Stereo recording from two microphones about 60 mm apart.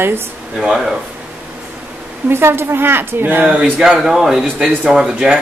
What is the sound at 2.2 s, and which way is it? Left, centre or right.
Speech, right.